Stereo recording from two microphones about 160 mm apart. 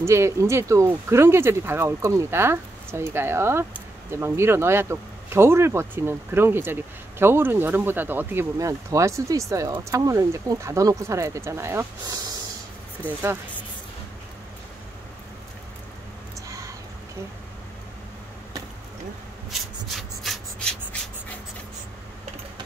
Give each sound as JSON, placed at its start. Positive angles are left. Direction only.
{"t": 0.0, "sound": "speech", "side_deg": -15}
{"t": 16.3, "sound": "a sound", "side_deg": -20}
{"t": 19.5, "sound": "rub", "side_deg": 0}